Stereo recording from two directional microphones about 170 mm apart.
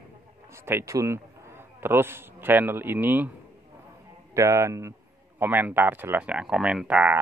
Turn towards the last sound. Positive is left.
turn(degrees=-10)  # may be behind; listen again after turning